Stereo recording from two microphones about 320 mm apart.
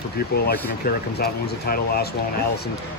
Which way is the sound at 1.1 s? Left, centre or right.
Left.